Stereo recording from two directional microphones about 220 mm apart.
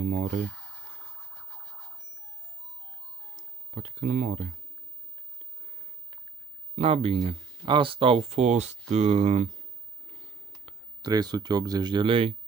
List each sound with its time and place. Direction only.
0.0 s a sound: 35° right (ahead or behind)
1.5 s music: 15° right (ahead or behind)
3.3 s speech: 35° right (ahead or behind)
6.7 s speech: 30° right (ahead or behind)
10.5 s speech: 20° right (ahead or behind)